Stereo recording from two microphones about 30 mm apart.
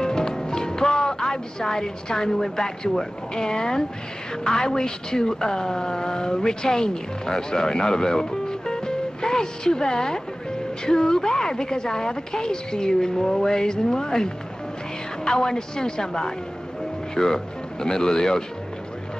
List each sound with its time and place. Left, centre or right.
0.0 s a woman's voice: left